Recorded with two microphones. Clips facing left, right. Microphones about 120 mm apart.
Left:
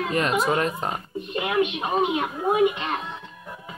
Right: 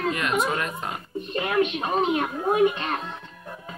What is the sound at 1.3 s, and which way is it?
Speech, 20° left (ahead or behind).